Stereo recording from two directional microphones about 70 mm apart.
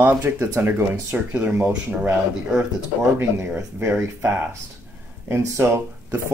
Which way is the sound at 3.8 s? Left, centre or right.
Right.